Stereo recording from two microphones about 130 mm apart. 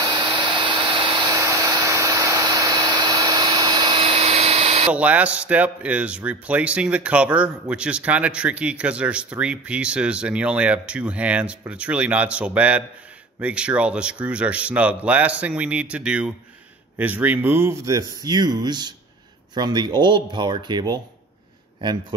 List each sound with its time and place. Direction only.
0.0 s vacuum cleaner: 35° right (ahead or behind)
4.9 s speech: 10° right (ahead or behind); by 21.0 s 35° right (ahead or behind)